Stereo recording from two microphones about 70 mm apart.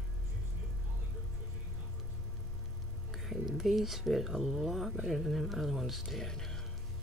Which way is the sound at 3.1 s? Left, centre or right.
Centre.